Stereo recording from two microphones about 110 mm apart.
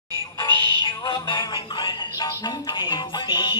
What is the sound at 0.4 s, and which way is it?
Music, 45° left (ahead or behind).